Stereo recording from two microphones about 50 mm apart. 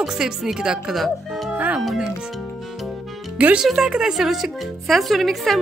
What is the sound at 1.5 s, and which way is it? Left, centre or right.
Music, right.